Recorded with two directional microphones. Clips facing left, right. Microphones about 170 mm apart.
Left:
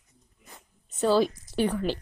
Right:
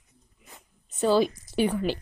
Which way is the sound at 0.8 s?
Centre (ahead or behind).